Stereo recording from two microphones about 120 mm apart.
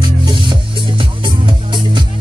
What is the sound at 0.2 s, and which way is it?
Music, 40° right (ahead or behind).